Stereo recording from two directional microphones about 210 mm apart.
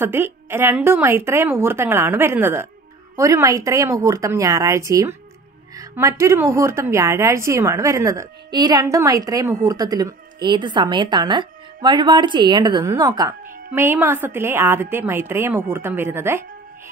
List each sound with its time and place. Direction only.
0.0 s a woman's voice: 10° right (ahead or behind)